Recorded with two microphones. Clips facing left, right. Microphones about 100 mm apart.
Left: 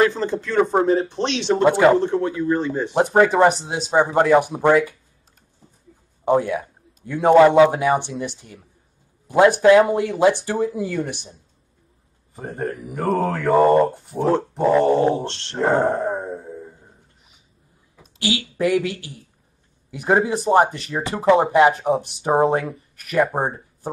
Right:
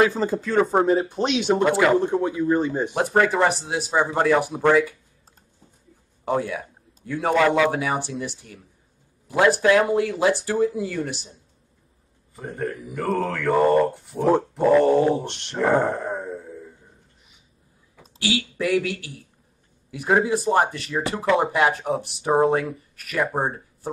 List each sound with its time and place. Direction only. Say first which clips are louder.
0.0 s speech: left 1 dB; 5° right (ahead or behind)
1.6 s speech: left 6 dB; 25° left (ahead or behind)
2.0 s speech: left 1 dB; 10° right (ahead or behind)
2.9 s speech: left 6 dB; 20° left (ahead or behind)
6.2 s speech: left 6 dB; 20° left (ahead or behind)
12.4 s a man's voice: left 2 dB; 30° left (ahead or behind)
13.5 s speech: left 3 dB; 20° left (ahead or behind)
15.2 s speech: left 4 dB; 15° right (ahead or behind)
15.5 s speech: left 1 dB; 20° left (ahead or behind)
16.2 s a sound: left 3 dB; 25° left (ahead or behind)
18.2 s speech: left 3 dB; 20° left (ahead or behind)